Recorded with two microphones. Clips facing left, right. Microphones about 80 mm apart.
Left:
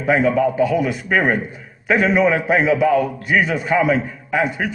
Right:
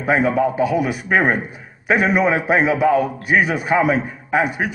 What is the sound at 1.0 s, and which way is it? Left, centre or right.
A man's voice, right.